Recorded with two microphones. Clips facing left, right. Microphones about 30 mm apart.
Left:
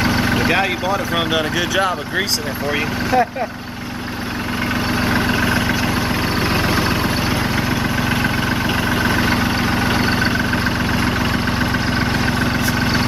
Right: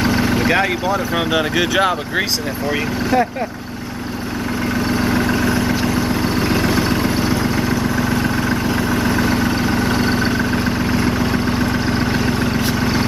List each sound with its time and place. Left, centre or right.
0.0 s speech: centre
2.7 s speech: centre
4.7 s vehicle: left
12.7 s a sound: centre